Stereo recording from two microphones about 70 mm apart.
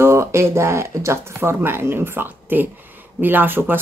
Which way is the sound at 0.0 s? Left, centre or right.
Right.